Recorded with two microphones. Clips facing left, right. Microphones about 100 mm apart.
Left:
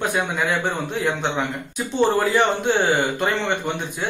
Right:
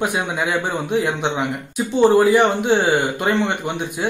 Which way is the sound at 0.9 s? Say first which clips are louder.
Right 5 dB; 20° right (ahead or behind).